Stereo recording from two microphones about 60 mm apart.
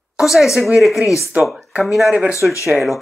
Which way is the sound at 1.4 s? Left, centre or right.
Centre.